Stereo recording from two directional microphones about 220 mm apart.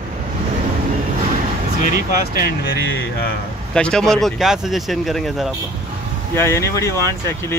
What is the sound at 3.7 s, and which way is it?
Speech, 5° left (ahead or behind).